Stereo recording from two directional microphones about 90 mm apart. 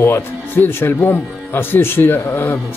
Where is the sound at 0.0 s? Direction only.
25° left (ahead or behind).